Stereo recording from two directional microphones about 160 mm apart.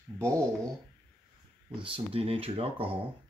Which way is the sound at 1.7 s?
35° right (ahead or behind).